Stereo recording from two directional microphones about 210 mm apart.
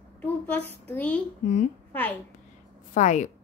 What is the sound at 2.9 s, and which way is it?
Speech, 35° left (ahead or behind).